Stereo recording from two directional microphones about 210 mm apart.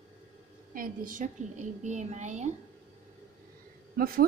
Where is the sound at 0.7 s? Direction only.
40° right (ahead or behind).